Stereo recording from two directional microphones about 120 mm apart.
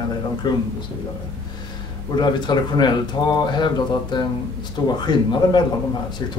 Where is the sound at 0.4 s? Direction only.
40° left (ahead or behind).